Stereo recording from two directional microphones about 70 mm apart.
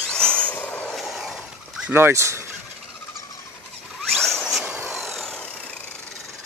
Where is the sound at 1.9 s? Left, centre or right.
Right.